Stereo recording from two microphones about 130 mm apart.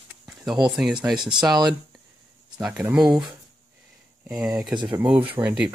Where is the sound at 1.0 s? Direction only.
15° right (ahead or behind).